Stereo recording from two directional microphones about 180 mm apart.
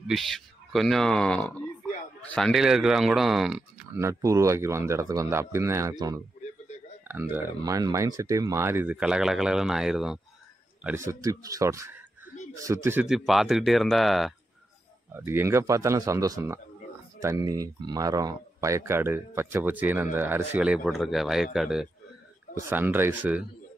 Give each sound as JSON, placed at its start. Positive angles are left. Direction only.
{"t": 0.1, "sound": "speech", "side_deg": 0}
{"t": 3.9, "sound": "speech", "side_deg": -15}
{"t": 11.1, "sound": "speech", "side_deg": -20}
{"t": 13.0, "sound": "speech", "side_deg": 0}
{"t": 15.1, "sound": "speech", "side_deg": -15}